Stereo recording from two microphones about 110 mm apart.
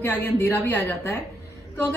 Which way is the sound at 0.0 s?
20° left (ahead or behind).